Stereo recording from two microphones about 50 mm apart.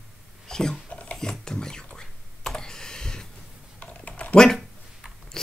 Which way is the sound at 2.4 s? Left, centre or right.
Centre.